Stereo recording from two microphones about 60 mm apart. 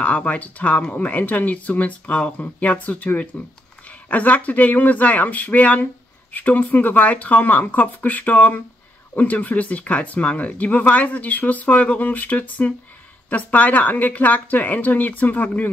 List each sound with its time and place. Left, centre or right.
0.0 s speech: left